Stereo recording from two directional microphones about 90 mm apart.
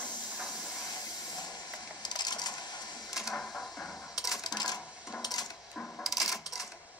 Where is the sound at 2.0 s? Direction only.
50° left (ahead or behind).